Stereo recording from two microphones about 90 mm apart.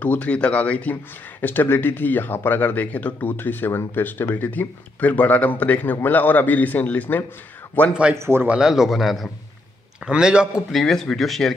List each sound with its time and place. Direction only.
0.0 s speech: 15° left (ahead or behind)
8.1 s a man's voice: 25° right (ahead or behind)
8.5 s a man's voice: 5° right (ahead or behind)
10.7 s a man's voice: 5° left (ahead or behind)